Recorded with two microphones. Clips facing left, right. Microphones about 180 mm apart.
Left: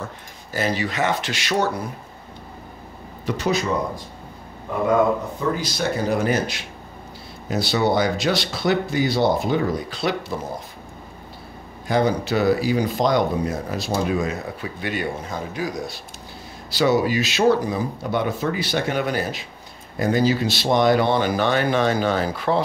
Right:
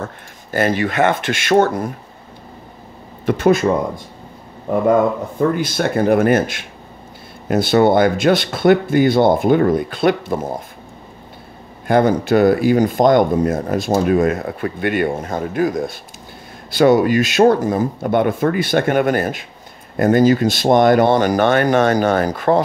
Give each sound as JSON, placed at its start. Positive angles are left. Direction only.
{"t": 0.0, "sound": "speech", "side_deg": -55}
{"t": 3.3, "sound": "speech", "side_deg": -55}
{"t": 5.5, "sound": "speech", "side_deg": -55}
{"t": 11.9, "sound": "speech", "side_deg": -50}